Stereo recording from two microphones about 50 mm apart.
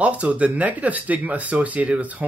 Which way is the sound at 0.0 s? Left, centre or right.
Right.